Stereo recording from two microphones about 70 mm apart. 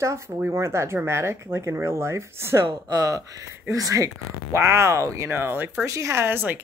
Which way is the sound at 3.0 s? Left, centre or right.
Right.